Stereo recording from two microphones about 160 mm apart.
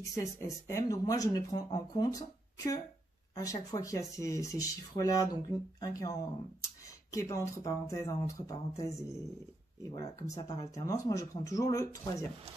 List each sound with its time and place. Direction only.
0.1 s speech: 20° left (ahead or behind)